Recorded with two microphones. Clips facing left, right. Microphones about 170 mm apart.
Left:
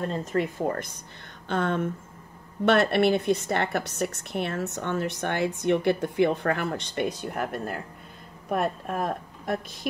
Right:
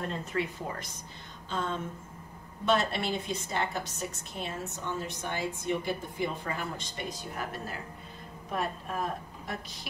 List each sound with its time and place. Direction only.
0.2 s a woman's voice: 45° left (ahead or behind)